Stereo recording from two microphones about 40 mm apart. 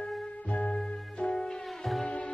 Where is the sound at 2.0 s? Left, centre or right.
Left.